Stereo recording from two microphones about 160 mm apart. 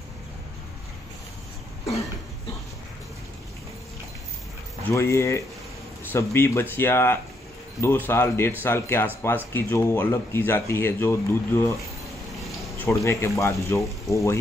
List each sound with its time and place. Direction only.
4.8 s speech: 15° left (ahead or behind)
12.8 s speech: 15° left (ahead or behind)